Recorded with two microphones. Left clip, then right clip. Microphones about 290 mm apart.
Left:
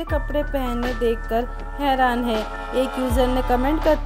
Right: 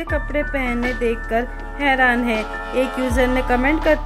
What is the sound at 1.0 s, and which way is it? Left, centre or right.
Music, centre.